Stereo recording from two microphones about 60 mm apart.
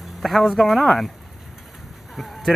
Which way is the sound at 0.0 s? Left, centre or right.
Centre.